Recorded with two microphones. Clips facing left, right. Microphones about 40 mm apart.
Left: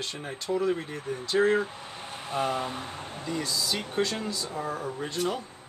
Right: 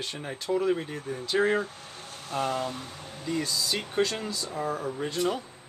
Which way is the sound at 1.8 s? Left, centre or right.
Left.